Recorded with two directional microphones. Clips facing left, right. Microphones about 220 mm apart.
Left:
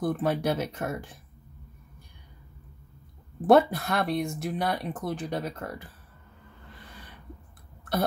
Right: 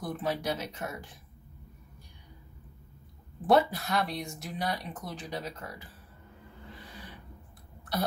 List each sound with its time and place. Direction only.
0.0 s speech: 55° left (ahead or behind)
3.4 s speech: 55° left (ahead or behind)